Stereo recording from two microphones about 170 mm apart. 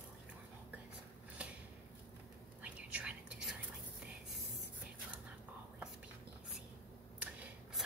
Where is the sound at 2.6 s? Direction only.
5° right (ahead or behind).